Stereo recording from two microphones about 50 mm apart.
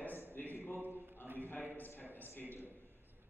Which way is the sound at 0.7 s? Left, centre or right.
Right.